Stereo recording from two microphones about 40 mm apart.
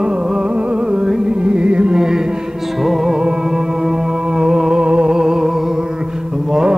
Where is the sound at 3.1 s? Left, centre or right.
Centre.